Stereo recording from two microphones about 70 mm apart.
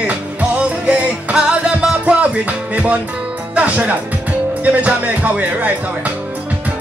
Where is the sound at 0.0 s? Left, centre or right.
Right.